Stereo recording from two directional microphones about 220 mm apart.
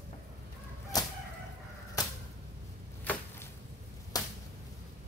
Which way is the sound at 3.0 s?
10° left (ahead or behind).